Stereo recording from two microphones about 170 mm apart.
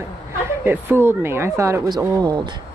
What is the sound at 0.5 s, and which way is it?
Speech, 15° right (ahead or behind).